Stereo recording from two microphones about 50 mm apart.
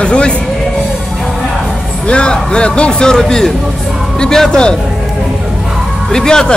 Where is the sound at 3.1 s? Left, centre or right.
Centre.